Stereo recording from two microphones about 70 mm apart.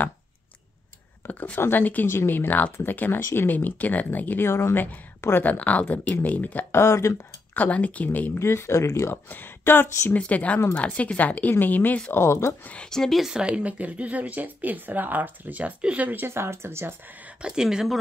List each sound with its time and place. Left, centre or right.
1.2 s a woman's voice: left
4.5 s a woman's voice: left
6.7 s speech: left
7.5 s a woman's voice: left
8.4 s speech: left
9.1 s a woman's voice: left
10.2 s a woman's voice: centre
12.1 s speech: left
12.6 s speech: centre
13.2 s speech: centre
16.3 s speech: right
17.4 s speech: centre